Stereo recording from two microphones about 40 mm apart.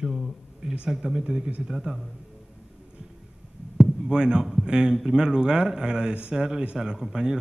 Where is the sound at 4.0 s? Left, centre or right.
Right.